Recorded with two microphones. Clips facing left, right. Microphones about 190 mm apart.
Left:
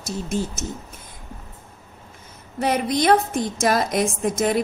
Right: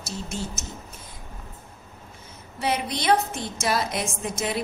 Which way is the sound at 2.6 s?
45° left (ahead or behind).